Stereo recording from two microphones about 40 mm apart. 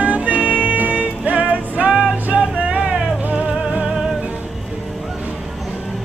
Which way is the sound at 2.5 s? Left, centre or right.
Right.